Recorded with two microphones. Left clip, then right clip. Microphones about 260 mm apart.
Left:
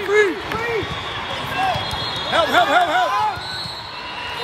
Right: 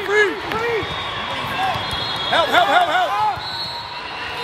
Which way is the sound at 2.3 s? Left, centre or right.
Right.